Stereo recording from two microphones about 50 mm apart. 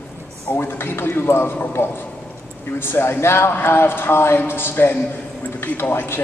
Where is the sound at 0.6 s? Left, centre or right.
Left.